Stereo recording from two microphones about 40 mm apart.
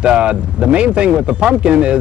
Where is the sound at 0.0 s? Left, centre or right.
Right.